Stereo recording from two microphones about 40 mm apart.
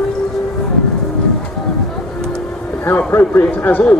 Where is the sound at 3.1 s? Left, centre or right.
Left.